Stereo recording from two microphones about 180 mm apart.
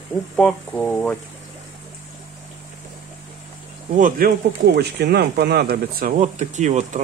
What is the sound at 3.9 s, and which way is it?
Speech, 45° right (ahead or behind).